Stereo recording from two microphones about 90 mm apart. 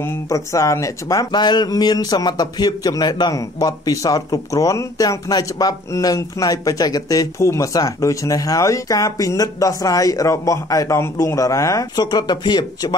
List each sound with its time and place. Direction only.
0.0 s speech: 35° left (ahead or behind)
12.1 s speech: 50° left (ahead or behind)